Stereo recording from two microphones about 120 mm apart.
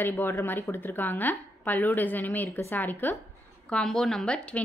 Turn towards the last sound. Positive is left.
turn(degrees=10)  # may be behind; listen again after turning